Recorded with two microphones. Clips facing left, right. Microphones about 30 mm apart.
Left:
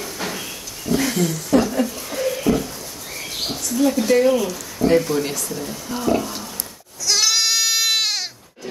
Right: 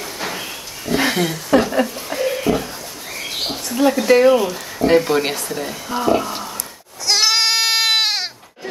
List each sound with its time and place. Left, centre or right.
0.0 s a sound: right
0.8 s a sound: right
3.2 s speech: right
5.1 s speech: right
5.9 s speech: right
7.1 s goat: right